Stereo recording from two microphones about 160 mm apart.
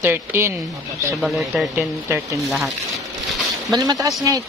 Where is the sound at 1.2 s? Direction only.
Centre (ahead or behind).